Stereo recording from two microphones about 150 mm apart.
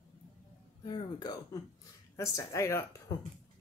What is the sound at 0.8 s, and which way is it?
Speech, 30° left (ahead or behind).